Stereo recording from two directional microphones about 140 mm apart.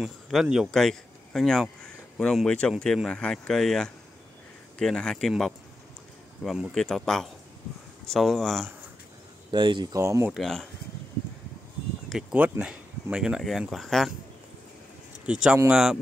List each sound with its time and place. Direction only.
0.0 s speech: 5° right (ahead or behind)
9.5 s speech: 35° right (ahead or behind)
9.9 s speech: 20° right (ahead or behind)
10.3 s speech: 5° left (ahead or behind)
12.1 s speech: 5° right (ahead or behind)
15.3 s speech: 10° right (ahead or behind)